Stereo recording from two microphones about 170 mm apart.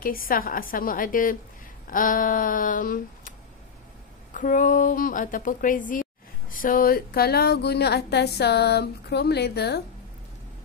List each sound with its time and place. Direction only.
0.0 s a woman's voice: 55° left (ahead or behind); by 9.8 s 70° left (ahead or behind)